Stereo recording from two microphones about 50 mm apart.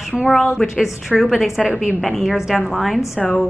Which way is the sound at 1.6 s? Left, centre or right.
Centre.